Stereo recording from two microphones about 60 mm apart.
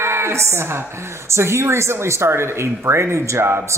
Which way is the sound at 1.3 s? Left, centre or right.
Right.